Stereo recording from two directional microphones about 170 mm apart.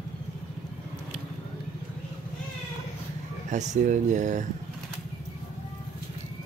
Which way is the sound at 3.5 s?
45° right (ahead or behind).